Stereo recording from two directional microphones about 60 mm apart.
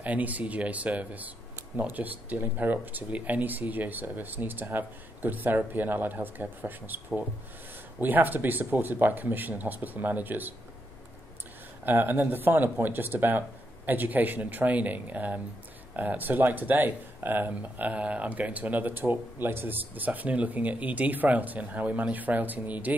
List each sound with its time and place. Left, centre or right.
0.0 s speech: right
8.0 s speech: right
11.8 s speech: right